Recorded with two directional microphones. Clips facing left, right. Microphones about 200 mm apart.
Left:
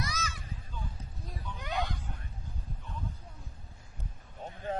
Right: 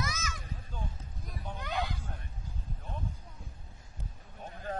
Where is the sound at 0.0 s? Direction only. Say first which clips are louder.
Even; 35° left (ahead or behind).